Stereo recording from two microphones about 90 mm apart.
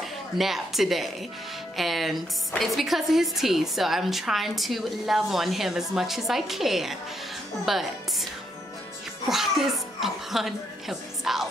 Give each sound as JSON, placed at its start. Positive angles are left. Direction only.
{"t": 0.0, "sound": "a woman's voice", "side_deg": 0}
{"t": 9.3, "sound": "speech", "side_deg": -5}